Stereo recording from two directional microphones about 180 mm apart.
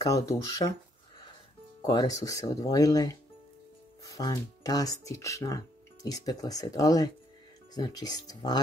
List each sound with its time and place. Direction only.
0.4 s speech: 15° left (ahead or behind)
1.8 s speech: 20° left (ahead or behind)